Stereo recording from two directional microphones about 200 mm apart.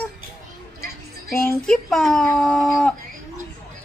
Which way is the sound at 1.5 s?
Centre (ahead or behind).